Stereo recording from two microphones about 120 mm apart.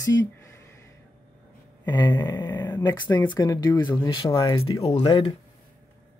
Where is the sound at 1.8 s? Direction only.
40° left (ahead or behind).